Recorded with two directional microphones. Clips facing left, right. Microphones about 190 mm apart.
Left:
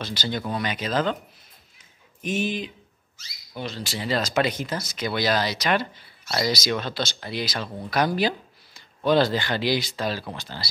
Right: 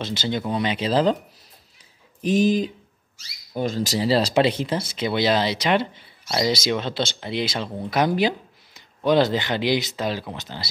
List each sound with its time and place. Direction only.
0.0 s speech: 25° right (ahead or behind)
2.2 s speech: 35° right (ahead or behind)
6.2 s speech: 15° right (ahead or behind)